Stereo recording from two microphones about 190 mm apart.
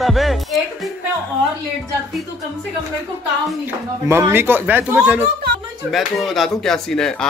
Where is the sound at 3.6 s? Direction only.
15° right (ahead or behind).